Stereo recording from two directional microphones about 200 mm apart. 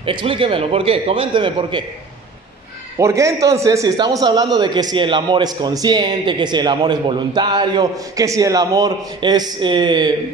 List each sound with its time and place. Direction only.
0.0 s a man's voice: 25° right (ahead or behind)
3.0 s a man's voice: 15° right (ahead or behind)